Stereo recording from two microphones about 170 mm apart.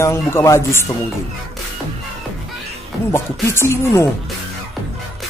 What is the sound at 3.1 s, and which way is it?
Speech, 15° left (ahead or behind).